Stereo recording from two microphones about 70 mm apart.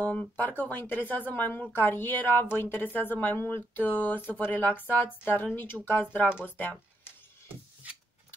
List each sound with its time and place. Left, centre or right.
0.0 s speech: left